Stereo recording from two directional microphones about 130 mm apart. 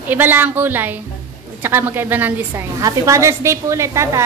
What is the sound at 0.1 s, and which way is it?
A woman's voice, 15° right (ahead or behind).